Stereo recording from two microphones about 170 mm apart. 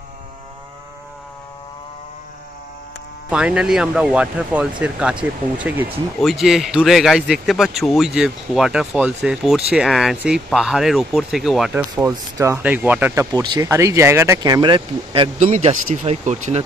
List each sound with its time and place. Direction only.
3.3 s speech: 5° right (ahead or behind)
11.9 s speech: 20° right (ahead or behind)
12.6 s speech: 10° right (ahead or behind); by 15.3 s 30° right (ahead or behind)
15.3 s speech: 40° right (ahead or behind)